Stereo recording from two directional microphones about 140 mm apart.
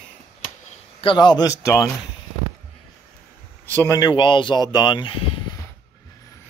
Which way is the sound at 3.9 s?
30° left (ahead or behind).